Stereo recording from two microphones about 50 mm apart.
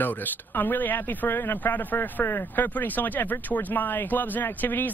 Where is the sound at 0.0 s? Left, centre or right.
Left.